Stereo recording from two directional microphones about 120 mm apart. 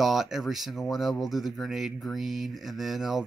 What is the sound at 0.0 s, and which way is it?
Speech, centre (ahead or behind).